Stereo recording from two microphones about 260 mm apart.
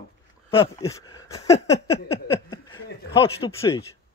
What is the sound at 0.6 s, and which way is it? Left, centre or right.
Speech, centre.